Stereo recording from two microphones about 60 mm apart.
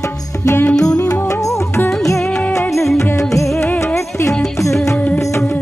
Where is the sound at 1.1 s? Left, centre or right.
Left.